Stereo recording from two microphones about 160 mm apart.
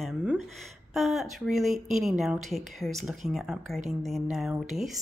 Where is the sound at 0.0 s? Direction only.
5° right (ahead or behind).